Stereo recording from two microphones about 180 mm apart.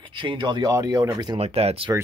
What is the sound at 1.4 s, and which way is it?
Speech, 35° right (ahead or behind).